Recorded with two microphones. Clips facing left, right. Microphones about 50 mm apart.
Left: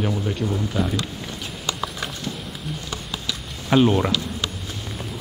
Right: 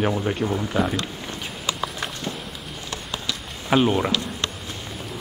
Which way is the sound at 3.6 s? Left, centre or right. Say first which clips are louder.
Left 2 dB; centre.